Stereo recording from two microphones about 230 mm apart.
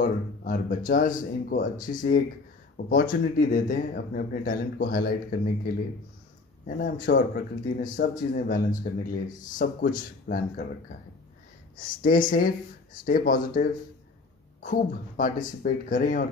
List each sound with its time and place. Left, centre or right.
0.0 s speech: left
6.6 s speech: left
11.7 s speech: left